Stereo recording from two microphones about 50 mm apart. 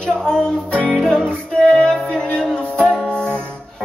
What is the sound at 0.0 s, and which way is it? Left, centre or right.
Music, centre.